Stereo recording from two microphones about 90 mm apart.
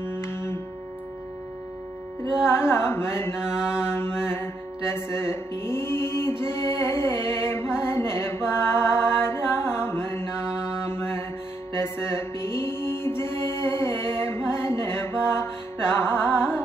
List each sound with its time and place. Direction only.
0.2 s music: 30° left (ahead or behind)
2.4 s carnatic music: 25° left (ahead or behind)
3.5 s mantra: 10° right (ahead or behind)
3.9 s music: 25° left (ahead or behind)
10.8 s mantra: 30° left (ahead or behind)
11.7 s music: 30° left (ahead or behind)